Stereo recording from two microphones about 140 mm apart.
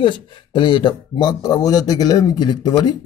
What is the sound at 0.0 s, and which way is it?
Speech, 35° left (ahead or behind).